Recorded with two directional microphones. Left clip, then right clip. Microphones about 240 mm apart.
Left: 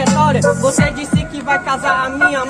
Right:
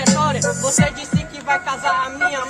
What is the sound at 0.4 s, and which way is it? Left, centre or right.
Music, right.